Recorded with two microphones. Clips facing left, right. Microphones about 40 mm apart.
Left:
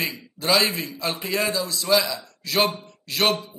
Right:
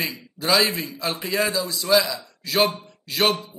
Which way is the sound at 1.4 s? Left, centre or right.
Centre.